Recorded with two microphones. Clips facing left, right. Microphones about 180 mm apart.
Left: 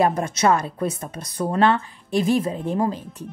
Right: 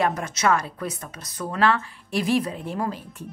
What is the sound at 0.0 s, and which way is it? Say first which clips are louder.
Speech: left 4 dB; 30° left (ahead or behind).